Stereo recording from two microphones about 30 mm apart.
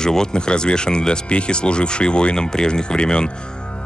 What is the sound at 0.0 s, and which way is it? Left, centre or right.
Speech, left.